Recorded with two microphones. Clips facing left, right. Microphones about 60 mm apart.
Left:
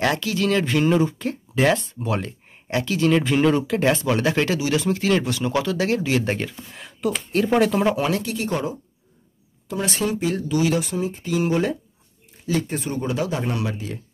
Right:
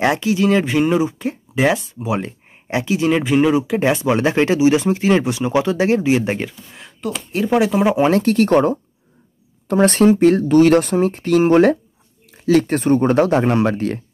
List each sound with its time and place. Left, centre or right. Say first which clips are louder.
0.0 s speech: right 5 dB; right
6.7 s speech: left 1 dB; centre
8.1 s speech: right 10 dB; right